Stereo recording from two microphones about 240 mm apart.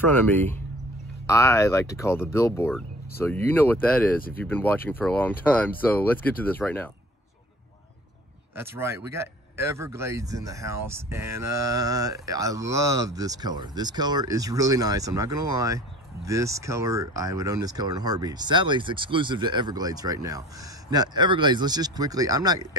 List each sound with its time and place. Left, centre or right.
0.0 s speech: centre
8.5 s speech: centre